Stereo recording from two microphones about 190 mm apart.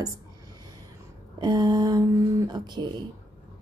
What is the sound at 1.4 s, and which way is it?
Speech, 20° right (ahead or behind).